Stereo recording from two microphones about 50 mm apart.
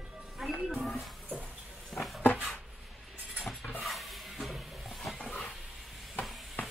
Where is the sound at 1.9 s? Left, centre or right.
Centre.